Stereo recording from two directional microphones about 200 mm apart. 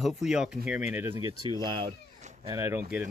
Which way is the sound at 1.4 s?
20° right (ahead or behind).